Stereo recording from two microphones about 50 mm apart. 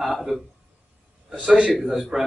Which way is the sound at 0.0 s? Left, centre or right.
Centre.